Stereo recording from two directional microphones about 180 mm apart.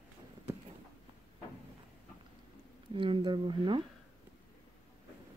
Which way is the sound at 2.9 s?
30° right (ahead or behind).